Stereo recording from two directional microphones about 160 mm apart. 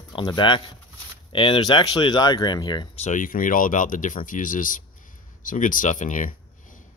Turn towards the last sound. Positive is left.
turn(degrees=55)  # may be behind; listen again after turning